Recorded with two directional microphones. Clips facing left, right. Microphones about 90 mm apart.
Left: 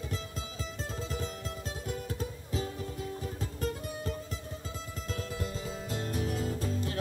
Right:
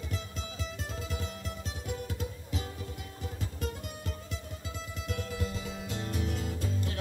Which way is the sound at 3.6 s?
35° left (ahead or behind).